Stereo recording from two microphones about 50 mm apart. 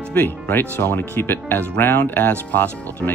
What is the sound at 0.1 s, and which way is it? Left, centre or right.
Speech, left.